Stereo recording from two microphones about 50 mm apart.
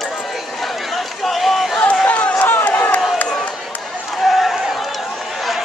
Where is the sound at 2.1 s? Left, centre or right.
Left.